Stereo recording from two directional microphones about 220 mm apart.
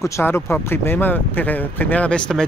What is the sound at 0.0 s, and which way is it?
Speech, 10° left (ahead or behind).